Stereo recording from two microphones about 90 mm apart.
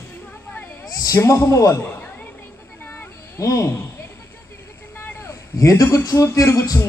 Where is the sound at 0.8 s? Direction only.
40° left (ahead or behind).